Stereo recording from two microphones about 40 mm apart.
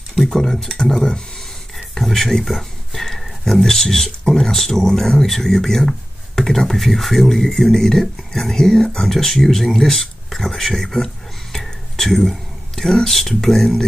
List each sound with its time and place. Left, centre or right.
0.3 s speech: centre
1.8 s speech: centre
11.5 s a sound: centre
13.0 s speech: centre